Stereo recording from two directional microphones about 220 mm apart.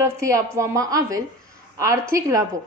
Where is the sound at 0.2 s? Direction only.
15° right (ahead or behind).